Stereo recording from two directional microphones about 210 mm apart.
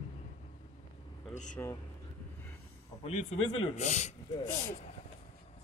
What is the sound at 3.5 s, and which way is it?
Speech, 30° left (ahead or behind).